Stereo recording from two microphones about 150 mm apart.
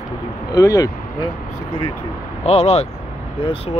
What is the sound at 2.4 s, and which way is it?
Speech, 45° left (ahead or behind).